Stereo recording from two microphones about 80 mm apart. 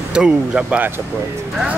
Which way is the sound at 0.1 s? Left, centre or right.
Centre.